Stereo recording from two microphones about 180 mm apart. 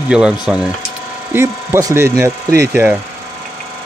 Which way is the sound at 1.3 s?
15° right (ahead or behind).